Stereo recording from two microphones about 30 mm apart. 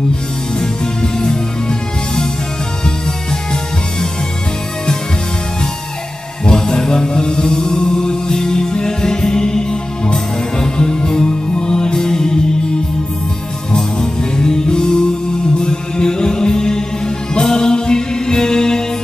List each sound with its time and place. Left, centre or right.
0.6 s music: left
6.5 s music: left
13.7 s music: left